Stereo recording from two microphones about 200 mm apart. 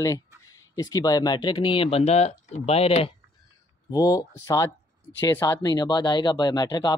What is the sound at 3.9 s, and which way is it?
Speech, 15° left (ahead or behind).